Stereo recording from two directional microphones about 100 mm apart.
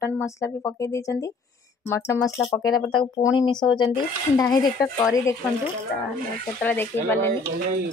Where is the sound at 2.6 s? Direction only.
45° left (ahead or behind).